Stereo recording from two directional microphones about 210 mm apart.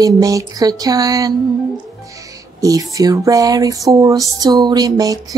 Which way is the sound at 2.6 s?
15° right (ahead or behind).